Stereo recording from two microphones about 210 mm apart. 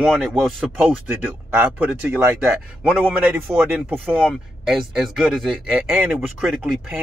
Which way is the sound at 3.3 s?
5° right (ahead or behind).